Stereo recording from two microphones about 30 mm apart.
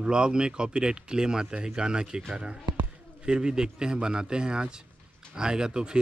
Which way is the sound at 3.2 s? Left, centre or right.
Right.